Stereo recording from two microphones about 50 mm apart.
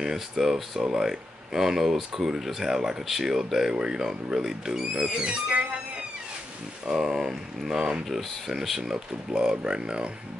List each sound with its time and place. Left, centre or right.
0.0 s speech: centre
5.0 s speech: centre
6.9 s speech: centre